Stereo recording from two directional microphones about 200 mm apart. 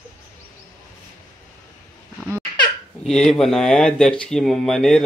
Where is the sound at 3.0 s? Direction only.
5° left (ahead or behind).